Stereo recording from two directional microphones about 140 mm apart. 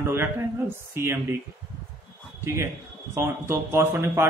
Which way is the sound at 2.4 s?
20° right (ahead or behind).